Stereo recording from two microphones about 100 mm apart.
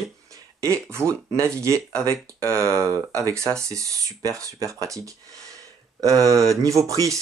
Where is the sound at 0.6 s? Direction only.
30° right (ahead or behind).